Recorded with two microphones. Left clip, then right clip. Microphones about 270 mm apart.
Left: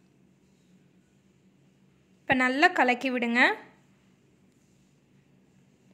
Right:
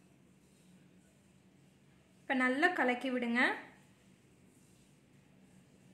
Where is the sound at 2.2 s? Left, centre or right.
Left.